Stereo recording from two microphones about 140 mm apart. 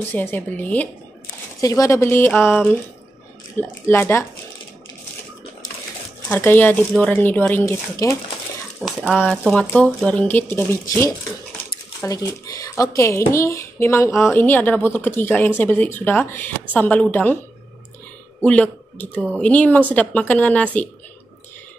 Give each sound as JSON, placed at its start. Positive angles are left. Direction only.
{"t": 0.1, "sound": "speech", "side_deg": 15}
{"t": 1.6, "sound": "speech", "side_deg": 25}
{"t": 6.2, "sound": "speech", "side_deg": 15}
{"t": 8.8, "sound": "speech", "side_deg": -5}
{"t": 9.9, "sound": "speech", "side_deg": 10}
{"t": 18.4, "sound": "speech", "side_deg": 10}